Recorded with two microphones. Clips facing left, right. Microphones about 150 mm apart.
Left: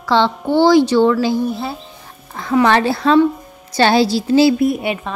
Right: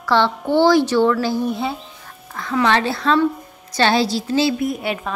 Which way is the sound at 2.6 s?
40° left (ahead or behind).